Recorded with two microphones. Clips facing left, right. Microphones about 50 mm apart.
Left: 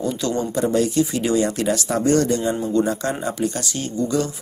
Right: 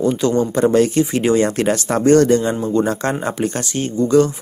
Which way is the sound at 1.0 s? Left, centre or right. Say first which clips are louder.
Right 4 dB; right.